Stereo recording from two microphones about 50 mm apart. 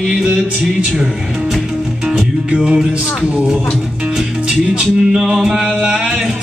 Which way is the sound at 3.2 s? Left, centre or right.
Right.